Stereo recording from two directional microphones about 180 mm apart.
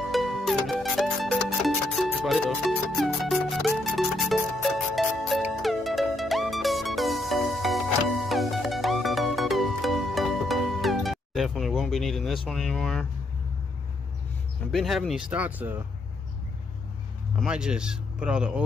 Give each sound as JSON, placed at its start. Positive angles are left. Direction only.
{"t": 0.1, "sound": "music", "side_deg": 0}
{"t": 12.4, "sound": "speech", "side_deg": 0}
{"t": 14.7, "sound": "speech", "side_deg": 0}
{"t": 17.4, "sound": "speech", "side_deg": -5}